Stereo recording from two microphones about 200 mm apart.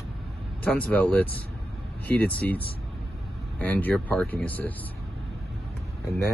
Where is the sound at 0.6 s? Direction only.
5° left (ahead or behind).